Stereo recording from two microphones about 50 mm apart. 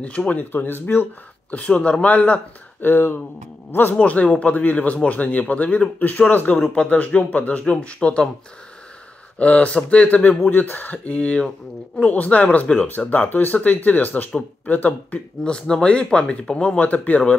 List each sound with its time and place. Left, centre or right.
0.3 s speech: left
1.5 s speech: left
2.8 s speech: left
3.9 s speech: left
9.4 s speech: left
12.7 s speech: left
15.4 s speech: centre; by 17.2 s left